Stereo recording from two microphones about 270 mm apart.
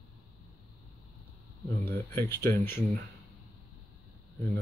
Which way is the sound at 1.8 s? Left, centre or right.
Centre.